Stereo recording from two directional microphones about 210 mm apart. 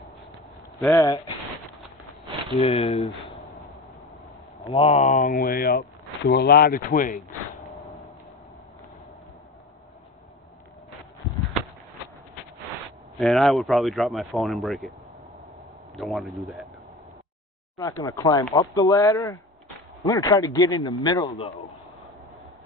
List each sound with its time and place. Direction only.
0.9 s speech: 15° left (ahead or behind)
2.6 s a man's voice: 20° left (ahead or behind)
4.6 s speech: 30° left (ahead or behind)
13.2 s speech: centre (ahead or behind)
16.0 s speech: centre (ahead or behind)
17.7 s a man's voice: 15° left (ahead or behind)